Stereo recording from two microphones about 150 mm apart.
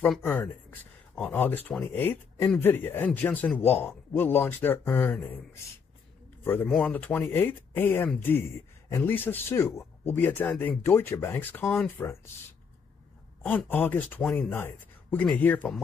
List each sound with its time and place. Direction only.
0.2 s speech: 15° left (ahead or behind)
11.6 s speech: centre (ahead or behind)
13.4 s speech: 10° left (ahead or behind)
14.6 s speech: 15° left (ahead or behind)